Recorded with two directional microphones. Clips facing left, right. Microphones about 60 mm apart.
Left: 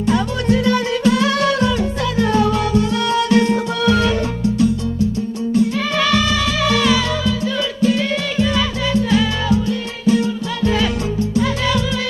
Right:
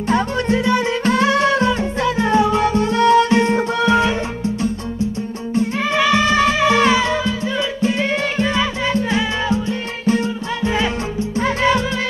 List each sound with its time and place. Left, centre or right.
0.0 s music: right
0.7 s music: right
1.0 s music: right
5.9 s music: centre
6.2 s music: right
11.3 s music: right